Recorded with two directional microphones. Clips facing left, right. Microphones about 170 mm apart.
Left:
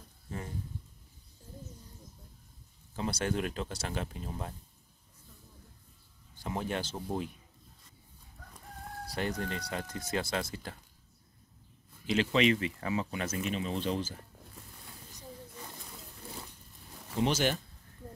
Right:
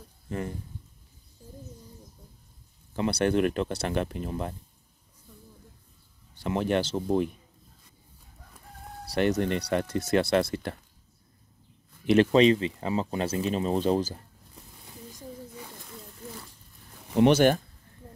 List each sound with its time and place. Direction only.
2.9 s speech: 65° right (ahead or behind)
6.3 s speech: 75° right (ahead or behind)
9.1 s speech: 75° right (ahead or behind)
12.1 s speech: 50° right (ahead or behind)
12.4 s speech: 30° right (ahead or behind)
17.1 s speech: 65° right (ahead or behind)